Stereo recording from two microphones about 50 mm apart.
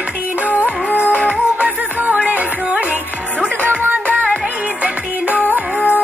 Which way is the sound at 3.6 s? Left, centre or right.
Right.